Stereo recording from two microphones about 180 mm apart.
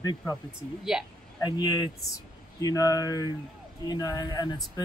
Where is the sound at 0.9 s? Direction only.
5° right (ahead or behind).